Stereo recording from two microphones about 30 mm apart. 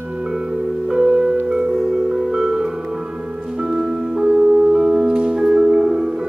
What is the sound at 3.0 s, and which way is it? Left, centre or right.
Music, right.